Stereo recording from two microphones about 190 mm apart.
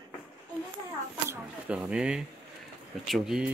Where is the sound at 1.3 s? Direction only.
5° right (ahead or behind).